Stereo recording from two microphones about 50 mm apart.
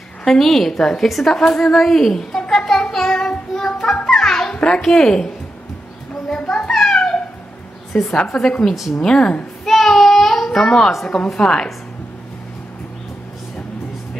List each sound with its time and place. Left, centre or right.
0.2 s a woman's voice: centre
2.5 s music: centre
4.6 s a child's voice: centre
6.2 s a sound: centre
7.9 s a woman's voice: centre
9.7 s a sound: centre
11.2 s a woman's voice: centre